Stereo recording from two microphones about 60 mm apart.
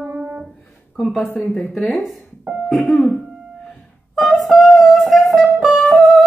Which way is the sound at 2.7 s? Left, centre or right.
Centre.